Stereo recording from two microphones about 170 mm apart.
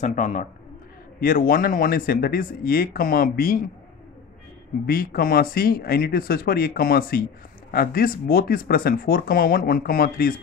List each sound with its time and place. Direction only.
0.0 s a man's voice: 45° left (ahead or behind)
1.2 s speech: 55° left (ahead or behind)
4.8 s speech: 60° left (ahead or behind)